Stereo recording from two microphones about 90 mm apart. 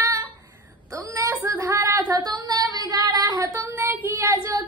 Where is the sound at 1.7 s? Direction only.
35° right (ahead or behind).